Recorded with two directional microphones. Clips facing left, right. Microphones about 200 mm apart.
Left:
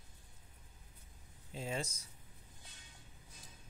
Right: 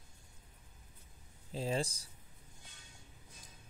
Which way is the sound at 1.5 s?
35° right (ahead or behind).